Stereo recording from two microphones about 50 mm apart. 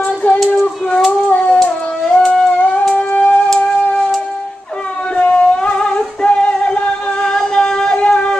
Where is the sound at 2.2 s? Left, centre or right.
Centre.